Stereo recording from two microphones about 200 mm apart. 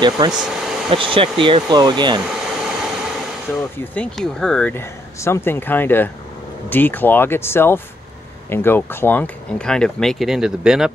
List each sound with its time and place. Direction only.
0.3 s speech: 5° right (ahead or behind)
0.8 s speech: 25° right (ahead or behind)
2.2 s a sound: centre (ahead or behind)
3.5 s speech: 10° left (ahead or behind)